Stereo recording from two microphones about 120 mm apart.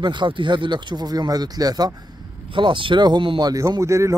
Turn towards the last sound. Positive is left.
turn(degrees=-25)  # may be behind; listen again after turning